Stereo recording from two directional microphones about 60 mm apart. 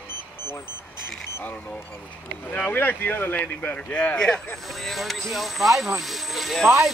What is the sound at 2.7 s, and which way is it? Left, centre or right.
Speech, left.